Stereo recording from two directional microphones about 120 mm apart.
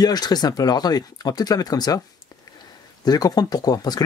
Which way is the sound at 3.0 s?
35° left (ahead or behind).